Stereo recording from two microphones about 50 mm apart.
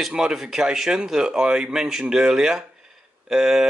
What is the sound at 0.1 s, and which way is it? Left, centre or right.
Speech, centre.